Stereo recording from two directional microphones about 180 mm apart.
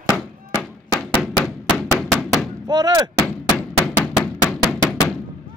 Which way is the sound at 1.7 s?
Centre (ahead or behind).